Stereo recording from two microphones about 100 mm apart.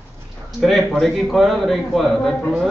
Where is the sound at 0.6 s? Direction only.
Centre (ahead or behind).